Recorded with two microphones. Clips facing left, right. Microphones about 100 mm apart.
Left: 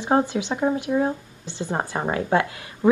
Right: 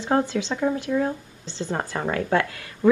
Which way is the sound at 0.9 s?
35° left (ahead or behind).